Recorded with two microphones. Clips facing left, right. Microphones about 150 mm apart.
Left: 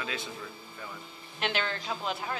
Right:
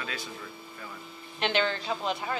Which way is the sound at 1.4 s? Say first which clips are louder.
Right 4 dB; 5° left (ahead or behind).